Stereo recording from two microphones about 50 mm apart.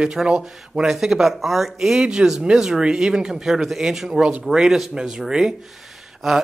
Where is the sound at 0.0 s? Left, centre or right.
Centre.